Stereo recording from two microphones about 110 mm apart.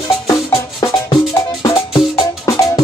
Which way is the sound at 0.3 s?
35° left (ahead or behind).